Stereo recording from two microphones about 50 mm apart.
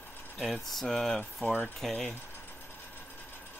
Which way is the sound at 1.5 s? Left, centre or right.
Centre.